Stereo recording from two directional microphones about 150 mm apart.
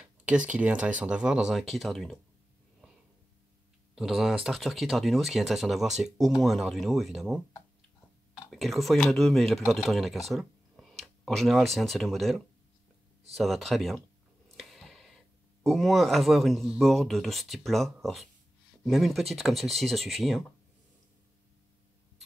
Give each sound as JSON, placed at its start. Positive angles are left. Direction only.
{"t": 0.2, "sound": "speech", "side_deg": -10}
{"t": 3.9, "sound": "speech", "side_deg": 0}
{"t": 8.5, "sound": "speech", "side_deg": 0}